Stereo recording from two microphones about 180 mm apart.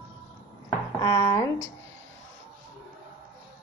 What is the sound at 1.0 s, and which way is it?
Speech, 20° left (ahead or behind).